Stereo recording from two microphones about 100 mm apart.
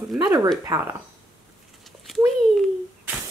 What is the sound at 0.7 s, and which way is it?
Speech, 45° right (ahead or behind).